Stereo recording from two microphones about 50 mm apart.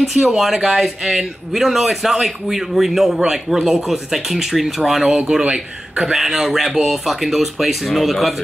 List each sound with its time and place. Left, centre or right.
0.0 s a man's voice: centre
5.1 s speech: right
6.1 s a man's voice: centre